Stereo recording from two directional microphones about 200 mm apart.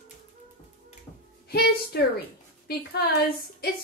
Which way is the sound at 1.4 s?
55° left (ahead or behind).